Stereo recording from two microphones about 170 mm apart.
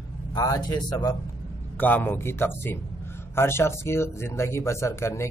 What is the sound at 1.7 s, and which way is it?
Speech, 10° left (ahead or behind).